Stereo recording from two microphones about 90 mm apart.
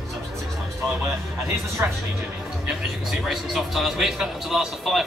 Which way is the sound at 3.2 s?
5° right (ahead or behind).